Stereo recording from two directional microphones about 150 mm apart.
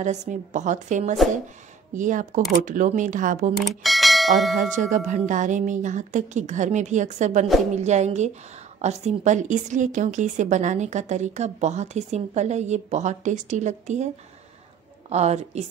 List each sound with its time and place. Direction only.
0.0 s a woman's voice: 50° right (ahead or behind)
3.6 s speech: centre (ahead or behind)
4.6 s a woman's voice: 55° right (ahead or behind)